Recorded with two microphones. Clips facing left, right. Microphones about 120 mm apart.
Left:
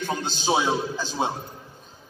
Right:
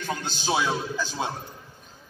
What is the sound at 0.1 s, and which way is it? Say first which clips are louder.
A man's voice: left 2 dB; 20° left (ahead or behind).